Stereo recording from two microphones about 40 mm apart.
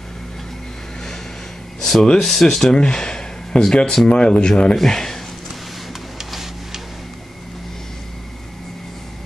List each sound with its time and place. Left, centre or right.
1.8 s speech: centre
4.7 s speech: centre
6.1 s printer: centre